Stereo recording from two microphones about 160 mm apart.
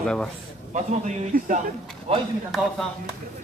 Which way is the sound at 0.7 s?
50° right (ahead or behind).